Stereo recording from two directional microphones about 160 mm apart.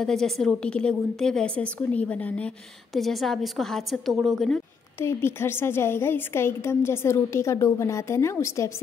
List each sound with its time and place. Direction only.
0.0 s a woman's voice: 5° left (ahead or behind)
5.0 s a woman's voice: 15° left (ahead or behind)